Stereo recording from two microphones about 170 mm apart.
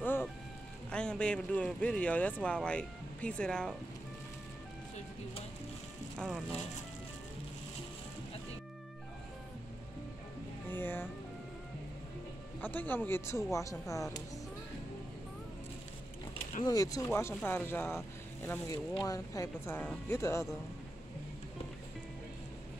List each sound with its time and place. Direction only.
0.9 s speech: 5° left (ahead or behind)
6.1 s speech: centre (ahead or behind)
10.7 s speech: 10° left (ahead or behind)
12.5 s speech: 10° left (ahead or behind)
16.6 s speech: 20° left (ahead or behind)